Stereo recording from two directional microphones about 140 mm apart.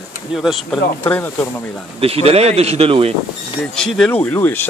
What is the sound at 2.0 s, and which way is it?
A man's voice, 45° right (ahead or behind).